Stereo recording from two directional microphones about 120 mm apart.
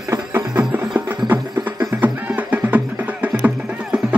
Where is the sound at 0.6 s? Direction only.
15° right (ahead or behind).